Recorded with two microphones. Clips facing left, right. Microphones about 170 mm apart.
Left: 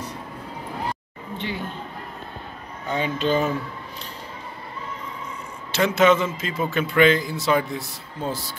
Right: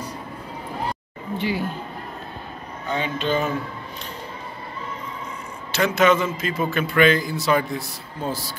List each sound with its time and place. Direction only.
1.4 s speech: 5° right (ahead or behind)
2.9 s speech: 40° left (ahead or behind)
5.7 s a man's voice: 25° left (ahead or behind)